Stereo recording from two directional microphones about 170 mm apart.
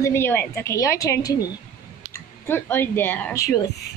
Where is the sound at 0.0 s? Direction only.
15° left (ahead or behind).